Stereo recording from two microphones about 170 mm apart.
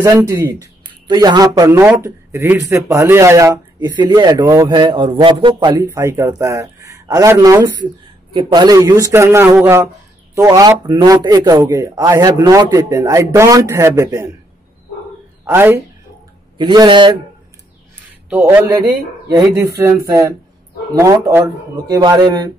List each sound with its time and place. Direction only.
0.0 s speech: 15° right (ahead or behind)
0.8 s speech: 25° right (ahead or behind)
5.9 s speech: 15° right (ahead or behind)
15.4 s speech: 10° right (ahead or behind)
16.5 s speech: 25° right (ahead or behind)
18.3 s speech: 15° right (ahead or behind)